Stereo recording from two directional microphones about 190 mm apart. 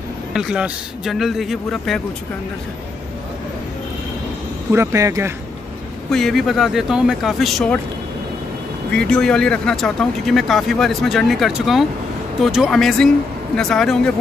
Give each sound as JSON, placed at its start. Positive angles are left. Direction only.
{"t": 0.3, "sound": "speech", "side_deg": -5}
{"t": 4.7, "sound": "speech", "side_deg": -15}
{"t": 6.0, "sound": "speech", "side_deg": 0}
{"t": 8.9, "sound": "speech", "side_deg": 5}